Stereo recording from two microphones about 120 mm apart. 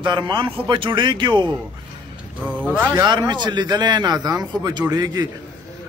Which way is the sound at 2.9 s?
35° right (ahead or behind).